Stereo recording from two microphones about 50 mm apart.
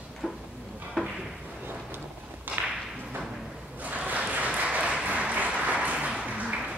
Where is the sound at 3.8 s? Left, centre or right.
Right.